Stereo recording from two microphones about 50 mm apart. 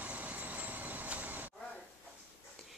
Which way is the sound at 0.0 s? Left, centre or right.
Right.